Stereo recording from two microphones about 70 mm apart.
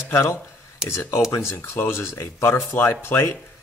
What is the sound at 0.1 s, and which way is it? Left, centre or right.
A man's voice, left.